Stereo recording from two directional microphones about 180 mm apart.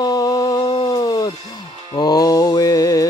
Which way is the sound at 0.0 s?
20° left (ahead or behind).